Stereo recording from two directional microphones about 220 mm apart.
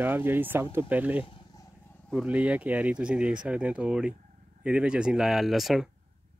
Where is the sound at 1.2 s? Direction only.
20° left (ahead or behind).